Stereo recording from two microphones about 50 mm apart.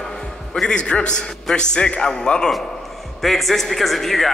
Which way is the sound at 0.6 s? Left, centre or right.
Centre.